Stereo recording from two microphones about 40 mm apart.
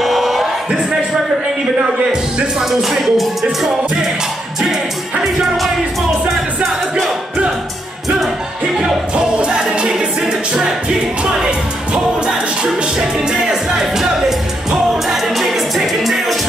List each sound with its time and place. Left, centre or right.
0.0 s crowd: centre
2.6 s music: centre
4.6 s music: centre
8.7 s music: centre
15.0 s music: centre